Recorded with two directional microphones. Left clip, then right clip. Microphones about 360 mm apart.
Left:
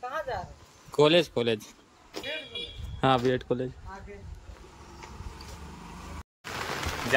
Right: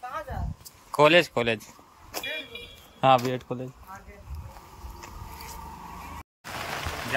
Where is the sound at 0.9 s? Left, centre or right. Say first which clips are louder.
Right 3 dB; centre.